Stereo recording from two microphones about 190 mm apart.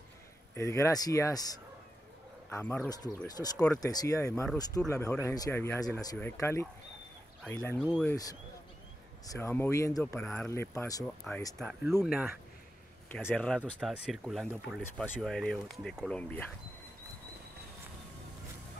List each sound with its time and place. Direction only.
0.6 s speech: 15° left (ahead or behind)
2.5 s speech: 10° left (ahead or behind)
3.5 s speech: 5° left (ahead or behind)
3.8 s speech: 20° left (ahead or behind)
9.2 s speech: 15° left (ahead or behind)
12.0 s speech: centre (ahead or behind)
13.1 s speech: 10° left (ahead or behind)